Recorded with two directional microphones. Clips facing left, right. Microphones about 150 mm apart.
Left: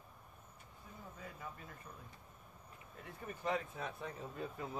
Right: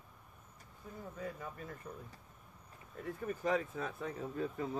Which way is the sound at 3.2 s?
40° right (ahead or behind).